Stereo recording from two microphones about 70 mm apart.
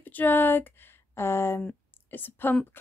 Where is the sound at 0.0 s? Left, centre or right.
Left.